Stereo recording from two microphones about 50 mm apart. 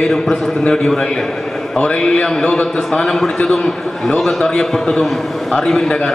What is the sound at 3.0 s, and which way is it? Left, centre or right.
A man's voice, centre.